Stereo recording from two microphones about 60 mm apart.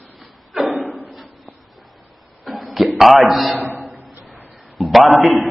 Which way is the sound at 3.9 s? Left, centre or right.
Right.